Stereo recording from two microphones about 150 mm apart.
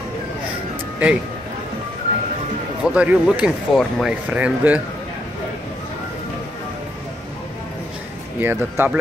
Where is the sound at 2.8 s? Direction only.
5° right (ahead or behind).